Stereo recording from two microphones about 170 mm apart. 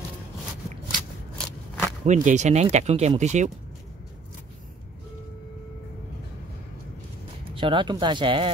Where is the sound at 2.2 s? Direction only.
45° right (ahead or behind).